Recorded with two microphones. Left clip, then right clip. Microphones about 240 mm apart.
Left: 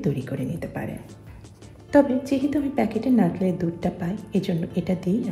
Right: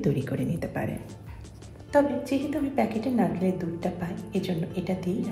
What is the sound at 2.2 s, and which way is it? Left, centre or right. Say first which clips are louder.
A woman's voice: left 4 dB; left.